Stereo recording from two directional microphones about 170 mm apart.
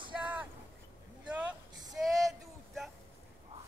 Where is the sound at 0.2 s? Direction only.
10° right (ahead or behind).